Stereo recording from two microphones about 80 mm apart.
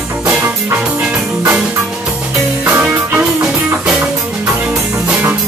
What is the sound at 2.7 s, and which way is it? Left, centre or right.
Music, centre.